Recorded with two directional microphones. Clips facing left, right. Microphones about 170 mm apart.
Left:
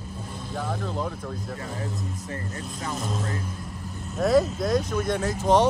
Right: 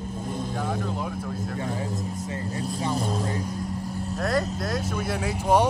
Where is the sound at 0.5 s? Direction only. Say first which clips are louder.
Left 3 dB; 10° right (ahead or behind).